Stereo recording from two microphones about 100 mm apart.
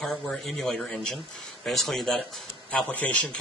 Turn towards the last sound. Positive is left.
turn(degrees=15)  # may be behind; listen again after turning